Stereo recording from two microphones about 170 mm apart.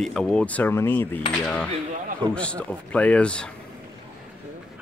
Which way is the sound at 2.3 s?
5° left (ahead or behind).